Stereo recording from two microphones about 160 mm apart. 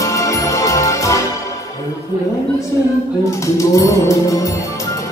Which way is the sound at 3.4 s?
20° left (ahead or behind).